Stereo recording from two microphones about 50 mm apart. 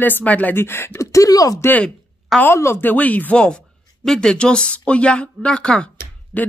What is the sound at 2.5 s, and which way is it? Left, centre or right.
Speech, left.